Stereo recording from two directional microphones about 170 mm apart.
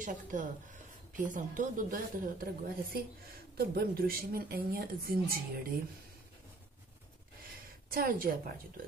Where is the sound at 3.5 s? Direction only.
65° right (ahead or behind).